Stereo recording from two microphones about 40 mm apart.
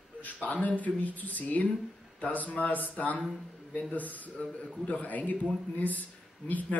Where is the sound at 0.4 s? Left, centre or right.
Left.